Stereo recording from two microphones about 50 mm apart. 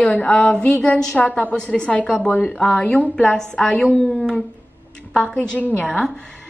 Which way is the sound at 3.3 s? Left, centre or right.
Centre.